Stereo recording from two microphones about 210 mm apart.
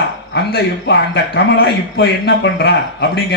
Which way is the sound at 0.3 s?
55° left (ahead or behind).